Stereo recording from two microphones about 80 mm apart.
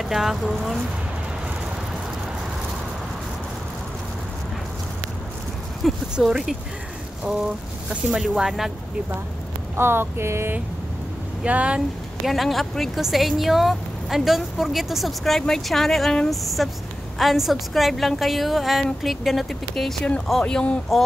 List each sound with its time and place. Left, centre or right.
0.0 s speech: centre
5.8 s speech: centre
8.1 s speech: centre
9.8 s a sound: right
11.4 s speech: centre
12.3 s speech: centre